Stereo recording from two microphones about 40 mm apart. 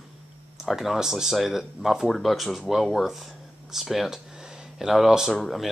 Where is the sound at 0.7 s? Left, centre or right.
Centre.